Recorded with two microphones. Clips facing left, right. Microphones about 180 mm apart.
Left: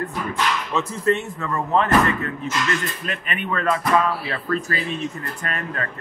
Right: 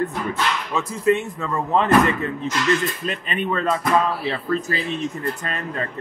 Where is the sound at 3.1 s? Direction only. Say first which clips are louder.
Right 1 dB; 30° right (ahead or behind).